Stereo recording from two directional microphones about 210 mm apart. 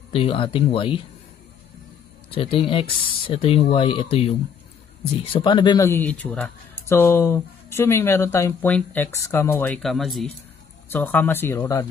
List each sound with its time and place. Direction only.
0.1 s speech: 25° left (ahead or behind)
2.3 s speech: 25° left (ahead or behind)